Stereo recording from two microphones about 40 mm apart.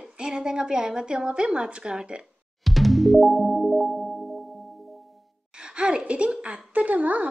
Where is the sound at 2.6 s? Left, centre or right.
Centre.